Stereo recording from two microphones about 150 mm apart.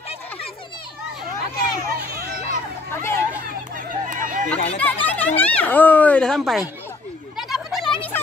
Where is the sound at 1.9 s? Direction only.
90° right.